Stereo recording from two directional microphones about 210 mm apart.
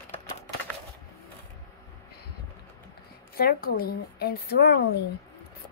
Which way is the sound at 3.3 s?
45° left (ahead or behind).